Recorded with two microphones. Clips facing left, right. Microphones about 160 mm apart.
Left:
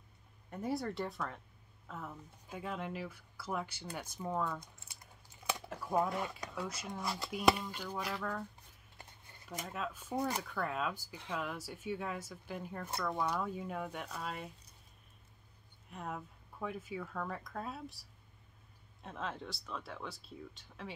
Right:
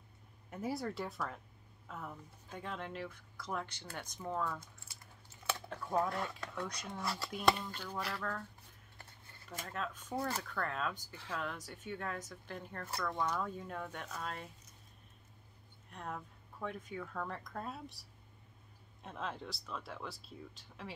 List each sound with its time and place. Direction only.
0.5 s speech: centre (ahead or behind)
7.0 s speech: 15° left (ahead or behind)
7.2 s speech: 5° left (ahead or behind)
9.5 s speech: 10° left (ahead or behind)
15.9 s speech: 5° left (ahead or behind)
19.0 s speech: centre (ahead or behind)